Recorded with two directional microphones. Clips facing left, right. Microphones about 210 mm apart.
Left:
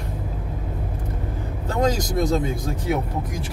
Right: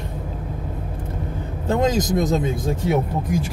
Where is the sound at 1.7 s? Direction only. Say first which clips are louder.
Right 3 dB; 20° right (ahead or behind).